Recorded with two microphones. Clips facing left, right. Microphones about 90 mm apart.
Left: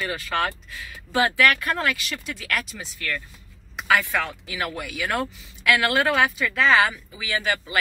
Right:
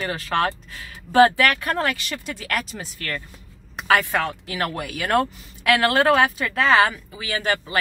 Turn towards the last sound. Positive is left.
turn(degrees=-40)  # may be behind; listen again after turning